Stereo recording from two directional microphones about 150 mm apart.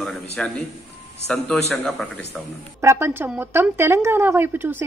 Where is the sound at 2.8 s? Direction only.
15° right (ahead or behind).